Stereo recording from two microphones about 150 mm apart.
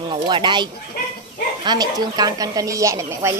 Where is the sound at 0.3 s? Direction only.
30° right (ahead or behind).